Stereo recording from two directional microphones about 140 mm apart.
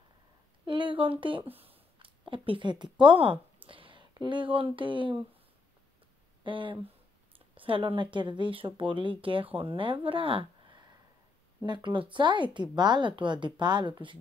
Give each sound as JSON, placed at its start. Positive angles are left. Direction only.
{"t": 0.7, "sound": "a woman's voice", "side_deg": -35}
{"t": 6.4, "sound": "speech", "side_deg": -35}